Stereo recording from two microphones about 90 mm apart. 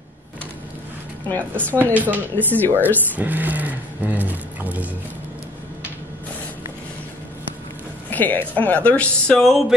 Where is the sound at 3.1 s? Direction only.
20° right (ahead or behind).